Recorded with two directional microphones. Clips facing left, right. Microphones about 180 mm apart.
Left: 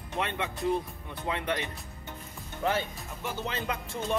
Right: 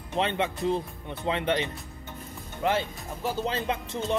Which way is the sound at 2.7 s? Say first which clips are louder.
Right 3 dB; 35° right (ahead or behind).